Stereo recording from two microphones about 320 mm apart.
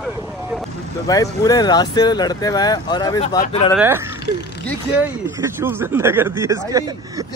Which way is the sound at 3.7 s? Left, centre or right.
Centre.